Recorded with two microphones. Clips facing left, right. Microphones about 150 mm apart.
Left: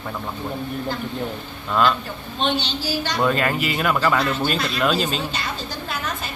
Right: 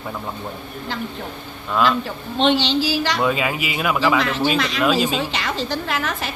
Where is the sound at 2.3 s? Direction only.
85° right.